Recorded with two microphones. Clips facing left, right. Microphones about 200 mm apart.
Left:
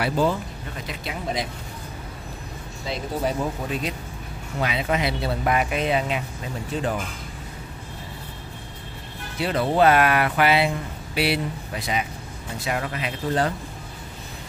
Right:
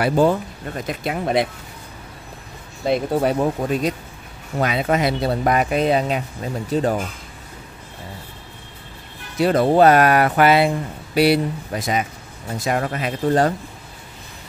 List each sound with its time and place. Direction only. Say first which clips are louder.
0.0 s speech: right 6 dB; 50° right (ahead or behind)
2.8 s speech: right 8 dB; 55° right (ahead or behind)
4.6 s speech: right 5 dB; 45° right (ahead or behind)
9.4 s speech: right 6 dB; 45° right (ahead or behind)